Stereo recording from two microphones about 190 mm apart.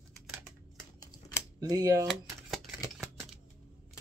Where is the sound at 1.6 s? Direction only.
20° right (ahead or behind).